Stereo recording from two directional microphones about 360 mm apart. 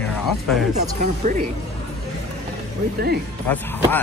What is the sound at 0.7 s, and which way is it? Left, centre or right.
Speech, right.